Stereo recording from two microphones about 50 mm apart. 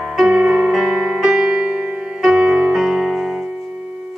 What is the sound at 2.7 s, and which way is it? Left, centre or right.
Music, centre.